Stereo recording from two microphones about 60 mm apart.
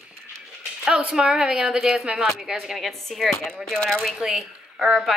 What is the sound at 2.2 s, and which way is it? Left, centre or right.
A woman's voice, centre.